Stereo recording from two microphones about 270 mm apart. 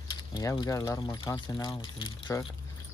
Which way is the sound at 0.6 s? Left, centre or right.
Centre.